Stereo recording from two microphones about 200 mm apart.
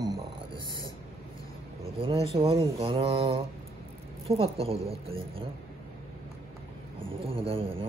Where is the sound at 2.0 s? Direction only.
30° right (ahead or behind).